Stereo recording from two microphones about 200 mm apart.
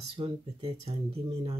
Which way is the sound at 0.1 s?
30° right (ahead or behind).